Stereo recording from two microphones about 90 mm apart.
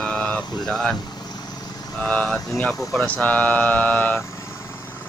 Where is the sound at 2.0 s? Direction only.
10° left (ahead or behind).